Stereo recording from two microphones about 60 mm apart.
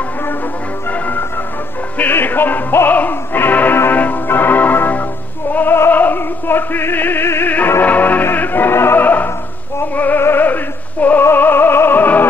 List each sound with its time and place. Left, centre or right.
0.8 s music: left
5.9 s opera: left
7.8 s music: left
10.2 s opera: left
11.2 s music: left